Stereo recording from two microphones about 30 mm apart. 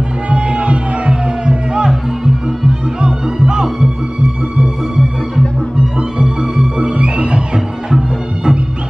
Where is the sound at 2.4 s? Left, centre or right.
Right.